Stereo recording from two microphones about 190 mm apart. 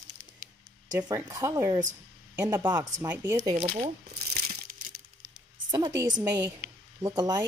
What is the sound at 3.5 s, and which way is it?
Speech, 35° right (ahead or behind).